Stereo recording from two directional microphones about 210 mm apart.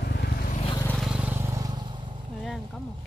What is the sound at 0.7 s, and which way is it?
Vehicle, 5° left (ahead or behind).